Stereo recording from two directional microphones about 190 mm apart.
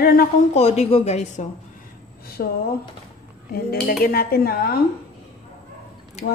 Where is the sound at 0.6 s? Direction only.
35° left (ahead or behind).